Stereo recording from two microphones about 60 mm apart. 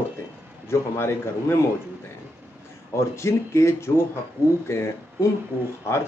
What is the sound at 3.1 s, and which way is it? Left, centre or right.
Speech, left.